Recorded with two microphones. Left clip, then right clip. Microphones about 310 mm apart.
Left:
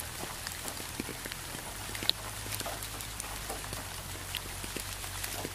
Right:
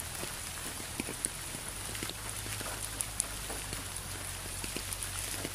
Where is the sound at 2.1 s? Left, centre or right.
Left.